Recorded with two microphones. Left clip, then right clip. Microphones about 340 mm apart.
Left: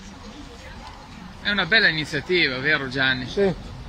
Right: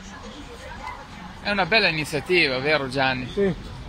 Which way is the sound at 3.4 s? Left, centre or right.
Left.